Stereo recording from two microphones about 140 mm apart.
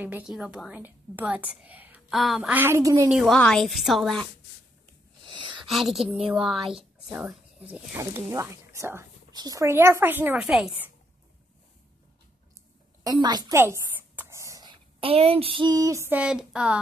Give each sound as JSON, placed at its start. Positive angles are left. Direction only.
{"t": 0.3, "sound": "a woman's voice", "side_deg": -5}
{"t": 2.1, "sound": "a woman's voice", "side_deg": 0}
{"t": 2.5, "sound": "speech", "side_deg": -15}
{"t": 3.1, "sound": "a woman's voice", "side_deg": -5}
{"t": 5.2, "sound": "a sound", "side_deg": -35}
{"t": 5.7, "sound": "a woman's voice", "side_deg": 0}
{"t": 7.9, "sound": "a woman's voice", "side_deg": -20}
{"t": 13.0, "sound": "speech", "side_deg": -30}
{"t": 13.6, "sound": "speech", "side_deg": -20}